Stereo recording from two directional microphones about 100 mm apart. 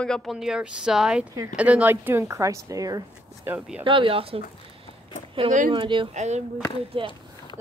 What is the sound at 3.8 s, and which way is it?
Speech, 60° right (ahead or behind).